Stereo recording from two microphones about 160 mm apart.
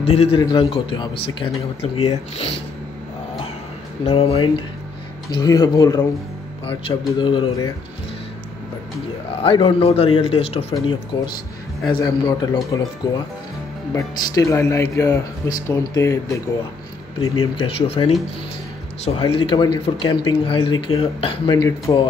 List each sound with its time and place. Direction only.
0.0 s speech: 40° left (ahead or behind)
0.4 s speech: 30° left (ahead or behind)
4.0 s speech: 40° left (ahead or behind)
5.3 s speech: 25° left (ahead or behind)
6.6 s speech: 30° left (ahead or behind)
9.4 s speech: 35° left (ahead or behind)
11.9 s speech: 25° left (ahead or behind)
17.6 s speech: 35° left (ahead or behind)
21.5 s speech: 20° left (ahead or behind)